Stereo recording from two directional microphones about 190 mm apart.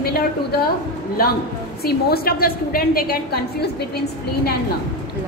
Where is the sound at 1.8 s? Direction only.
55° left (ahead or behind).